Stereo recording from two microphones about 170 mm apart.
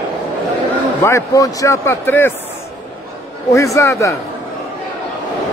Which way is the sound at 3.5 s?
20° left (ahead or behind).